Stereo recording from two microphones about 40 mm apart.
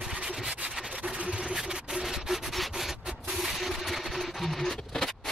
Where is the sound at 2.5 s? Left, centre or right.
Centre.